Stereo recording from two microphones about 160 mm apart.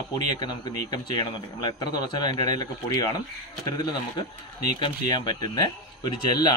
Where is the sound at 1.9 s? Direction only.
25° left (ahead or behind).